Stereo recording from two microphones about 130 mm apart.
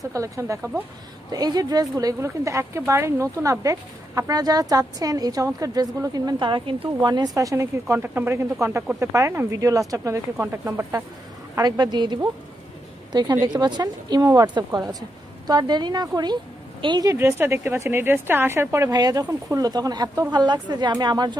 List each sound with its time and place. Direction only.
0.1 s a woman's voice: 25° right (ahead or behind)
11.5 s a woman's voice: 30° right (ahead or behind)
17.1 s a woman's voice: 15° right (ahead or behind); by 21.4 s 35° right (ahead or behind)